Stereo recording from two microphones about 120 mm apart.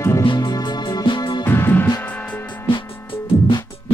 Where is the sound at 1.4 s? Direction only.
20° left (ahead or behind).